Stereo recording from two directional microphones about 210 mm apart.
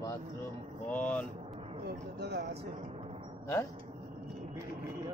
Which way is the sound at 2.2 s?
50° right (ahead or behind).